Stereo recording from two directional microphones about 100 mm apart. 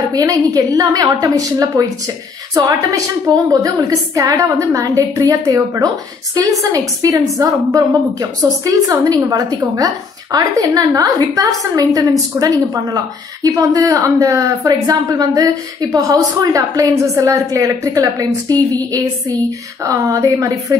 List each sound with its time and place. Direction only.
0.1 s a woman's voice: 35° right (ahead or behind)
5.2 s a woman's voice: 45° right (ahead or behind)